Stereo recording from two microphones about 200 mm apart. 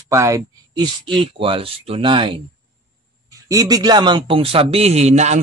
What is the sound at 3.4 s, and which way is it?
Speech, 20° right (ahead or behind).